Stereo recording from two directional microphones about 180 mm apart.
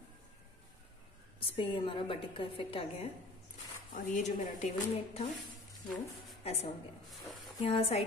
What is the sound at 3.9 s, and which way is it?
A woman's voice, 45° left (ahead or behind).